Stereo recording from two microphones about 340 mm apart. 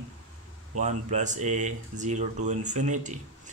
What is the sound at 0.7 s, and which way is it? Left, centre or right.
Speech, right.